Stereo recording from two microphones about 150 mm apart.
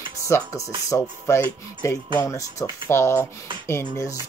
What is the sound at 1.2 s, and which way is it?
Speech, 15° left (ahead or behind).